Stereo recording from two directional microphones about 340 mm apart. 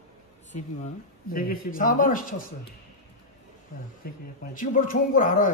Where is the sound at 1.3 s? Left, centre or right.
Left.